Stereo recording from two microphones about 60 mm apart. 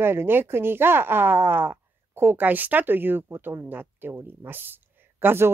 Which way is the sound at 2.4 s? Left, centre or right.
Right.